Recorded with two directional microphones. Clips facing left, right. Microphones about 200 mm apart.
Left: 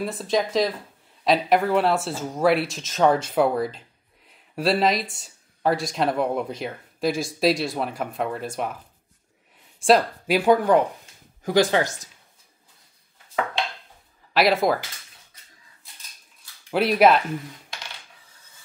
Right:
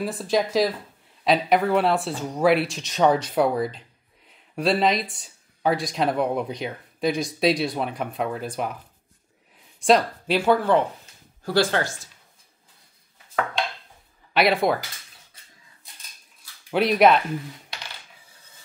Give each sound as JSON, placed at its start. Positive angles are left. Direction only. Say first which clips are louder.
{"t": 0.0, "sound": "speech", "louder": "right 1 dB", "side_deg": 0}
{"t": 4.3, "sound": "a sound", "louder": "even", "side_deg": 0}
{"t": 5.1, "sound": "speech", "louder": "even", "side_deg": 0}
{"t": 9.8, "sound": "speech", "louder": "left 1 dB", "side_deg": 5}
{"t": 14.3, "sound": "speech", "louder": "left 1 dB", "side_deg": 0}
{"t": 16.7, "sound": "speech", "louder": "even", "side_deg": 0}